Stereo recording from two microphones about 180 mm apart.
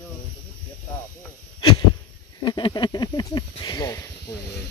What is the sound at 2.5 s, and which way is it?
Speech, 25° left (ahead or behind).